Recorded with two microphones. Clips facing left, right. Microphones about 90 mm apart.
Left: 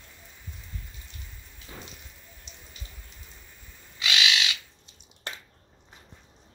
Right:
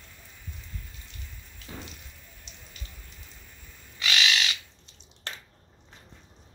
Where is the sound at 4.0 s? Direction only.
20° left (ahead or behind).